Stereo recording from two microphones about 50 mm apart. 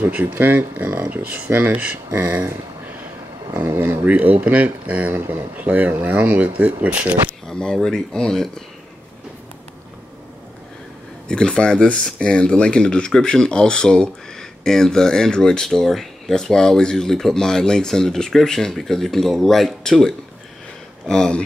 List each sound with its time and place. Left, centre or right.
0.0 s speech: right
3.6 s speech: right
7.4 s speech: centre
11.2 s speech: centre